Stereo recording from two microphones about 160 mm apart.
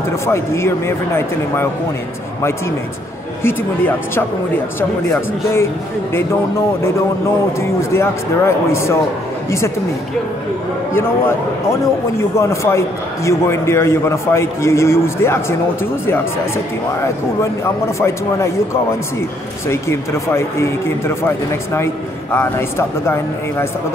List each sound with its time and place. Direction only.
0.1 s a man's voice: 15° left (ahead or behind)
3.4 s a man's voice: 15° left (ahead or behind)
7.9 s a man's voice: 15° left (ahead or behind)
12.4 s a man's voice: 15° left (ahead or behind)
19.7 s a man's voice: 15° left (ahead or behind)